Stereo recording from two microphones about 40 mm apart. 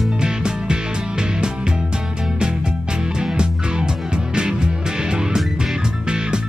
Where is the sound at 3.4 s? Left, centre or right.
Right.